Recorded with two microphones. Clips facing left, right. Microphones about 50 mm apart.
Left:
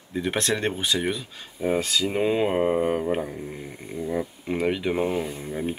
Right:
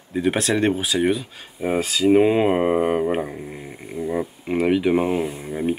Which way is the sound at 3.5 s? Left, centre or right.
Centre.